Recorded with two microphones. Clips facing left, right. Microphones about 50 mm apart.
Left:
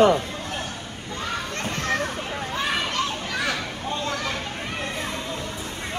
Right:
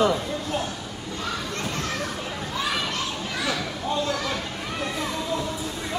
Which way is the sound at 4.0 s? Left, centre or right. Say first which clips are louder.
Right 1 dB; left.